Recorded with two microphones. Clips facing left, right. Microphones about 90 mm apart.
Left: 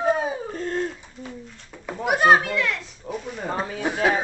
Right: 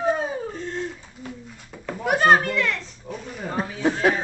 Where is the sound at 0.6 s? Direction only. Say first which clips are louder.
Left 4 dB; 45° left (ahead or behind).